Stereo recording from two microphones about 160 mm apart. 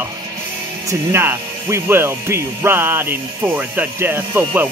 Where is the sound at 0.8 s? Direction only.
15° right (ahead or behind).